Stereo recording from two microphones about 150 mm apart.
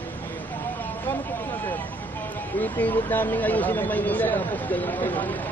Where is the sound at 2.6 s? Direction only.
10° left (ahead or behind).